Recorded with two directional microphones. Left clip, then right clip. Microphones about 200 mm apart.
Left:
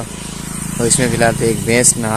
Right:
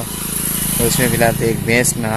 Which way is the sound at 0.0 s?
55° right (ahead or behind).